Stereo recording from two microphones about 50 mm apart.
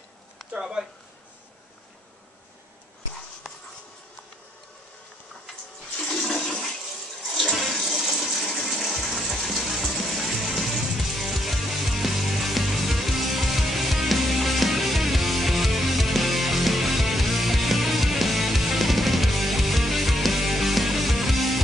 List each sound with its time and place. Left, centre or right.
0.5 s a sound: centre
6.0 s toilet flush: centre
7.5 s water: centre
9.8 s music: centre